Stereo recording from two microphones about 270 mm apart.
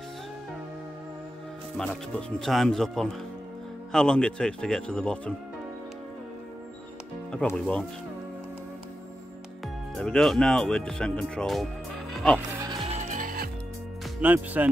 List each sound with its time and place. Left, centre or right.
1.8 s speech: centre
7.2 s speech: centre
9.9 s speech: centre
12.1 s music: centre
12.4 s music: right
14.2 s speech: centre